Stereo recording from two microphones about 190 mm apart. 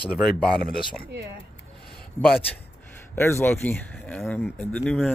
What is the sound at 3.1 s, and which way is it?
Speech, 15° left (ahead or behind).